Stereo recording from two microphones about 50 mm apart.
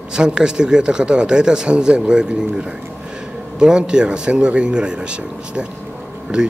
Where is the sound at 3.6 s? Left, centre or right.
Centre.